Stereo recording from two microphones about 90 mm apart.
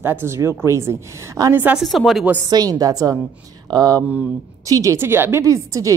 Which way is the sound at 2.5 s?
45° right (ahead or behind).